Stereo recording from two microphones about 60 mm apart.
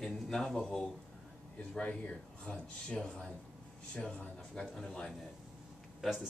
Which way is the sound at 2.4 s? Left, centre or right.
Centre.